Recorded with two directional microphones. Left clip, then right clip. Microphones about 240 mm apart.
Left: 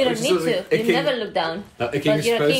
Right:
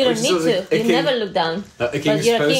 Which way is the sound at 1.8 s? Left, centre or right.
Centre.